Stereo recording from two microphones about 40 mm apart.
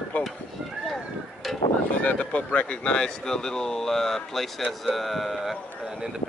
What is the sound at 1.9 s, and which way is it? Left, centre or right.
Speech, left.